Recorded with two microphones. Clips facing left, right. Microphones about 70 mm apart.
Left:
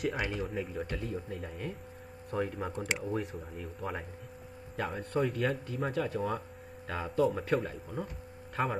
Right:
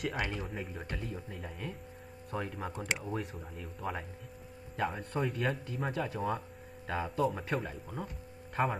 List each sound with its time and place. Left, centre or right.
0.0 s speech: centre
6.9 s speech: centre
7.2 s speech: centre